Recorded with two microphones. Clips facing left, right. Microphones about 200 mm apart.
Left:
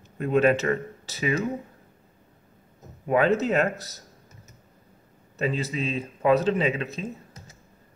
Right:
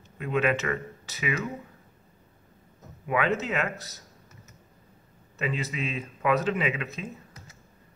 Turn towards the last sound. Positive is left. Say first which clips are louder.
# left 4 dB
turn(degrees=30)  # may be behind; listen again after turning